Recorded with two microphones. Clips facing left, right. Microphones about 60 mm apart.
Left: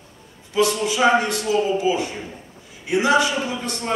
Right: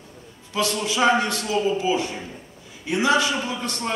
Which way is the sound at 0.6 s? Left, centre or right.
Left.